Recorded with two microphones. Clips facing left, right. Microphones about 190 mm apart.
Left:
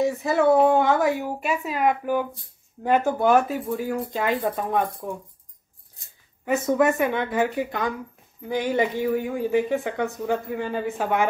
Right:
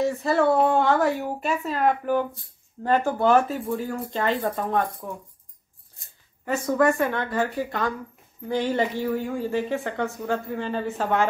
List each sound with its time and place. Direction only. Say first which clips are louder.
0.2 s speech: left 3 dB; 15° left (ahead or behind)
6.4 s speech: left 1 dB; 20° left (ahead or behind)